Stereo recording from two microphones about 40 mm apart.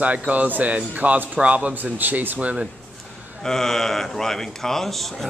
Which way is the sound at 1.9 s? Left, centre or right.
Right.